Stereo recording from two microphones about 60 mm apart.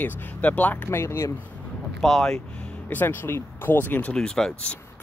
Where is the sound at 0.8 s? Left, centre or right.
Left.